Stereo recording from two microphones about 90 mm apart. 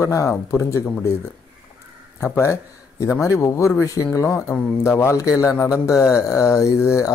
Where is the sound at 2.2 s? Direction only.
30° left (ahead or behind).